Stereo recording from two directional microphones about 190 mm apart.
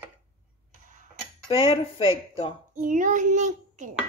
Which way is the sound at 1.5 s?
25° left (ahead or behind).